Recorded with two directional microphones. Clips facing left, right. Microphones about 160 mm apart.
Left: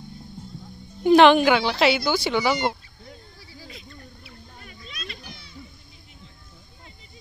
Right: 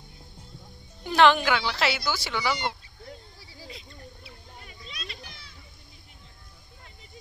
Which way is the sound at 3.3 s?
30° right (ahead or behind).